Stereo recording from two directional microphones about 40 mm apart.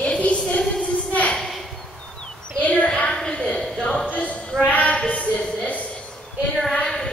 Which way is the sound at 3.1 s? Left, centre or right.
Left.